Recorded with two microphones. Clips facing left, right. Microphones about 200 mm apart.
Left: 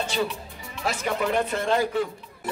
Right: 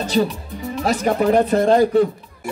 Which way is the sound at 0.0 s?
40° right (ahead or behind).